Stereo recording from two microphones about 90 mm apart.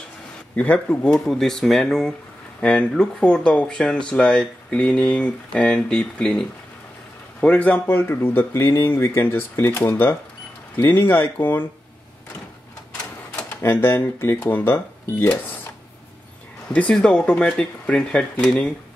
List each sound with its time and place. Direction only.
0.6 s speech: 15° left (ahead or behind)
13.6 s speech: 25° left (ahead or behind)
16.7 s speech: 10° left (ahead or behind)